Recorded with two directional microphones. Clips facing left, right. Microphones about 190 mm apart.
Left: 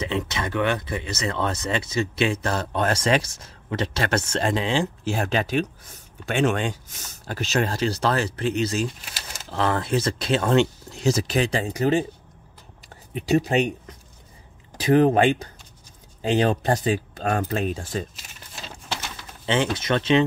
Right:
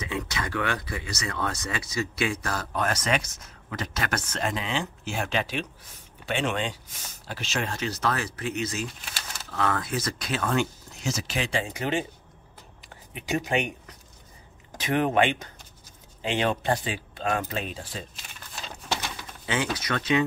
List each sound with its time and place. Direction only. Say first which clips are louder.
0.0 s speech: left 5 dB; 25° left (ahead or behind)
13.1 s speech: left 6 dB; 35° left (ahead or behind)
14.8 s speech: left 6 dB; 35° left (ahead or behind)
19.4 s speech: left 5 dB; 25° left (ahead or behind)